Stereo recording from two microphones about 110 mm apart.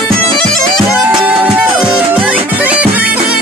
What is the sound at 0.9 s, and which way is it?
Music, 10° right (ahead or behind).